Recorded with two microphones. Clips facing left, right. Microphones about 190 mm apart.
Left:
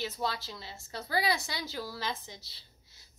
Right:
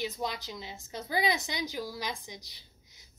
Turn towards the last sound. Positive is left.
turn(degrees=-15)  # may be behind; listen again after turning